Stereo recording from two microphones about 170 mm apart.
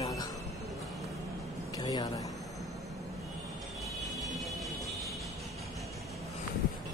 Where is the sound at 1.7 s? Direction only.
25° left (ahead or behind).